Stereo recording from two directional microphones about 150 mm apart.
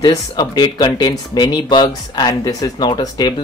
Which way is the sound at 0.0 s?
25° left (ahead or behind).